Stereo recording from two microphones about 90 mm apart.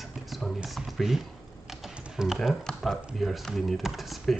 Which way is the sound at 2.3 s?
5° left (ahead or behind).